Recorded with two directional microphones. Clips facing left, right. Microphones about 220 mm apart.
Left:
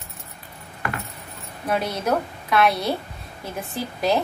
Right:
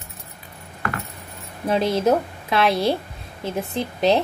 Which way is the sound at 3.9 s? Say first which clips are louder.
Right 3 dB; 25° right (ahead or behind).